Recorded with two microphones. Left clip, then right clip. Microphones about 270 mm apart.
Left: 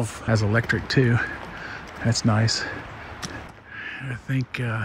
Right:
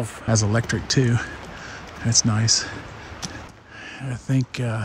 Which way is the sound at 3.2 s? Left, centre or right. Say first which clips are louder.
Right 1 dB; right.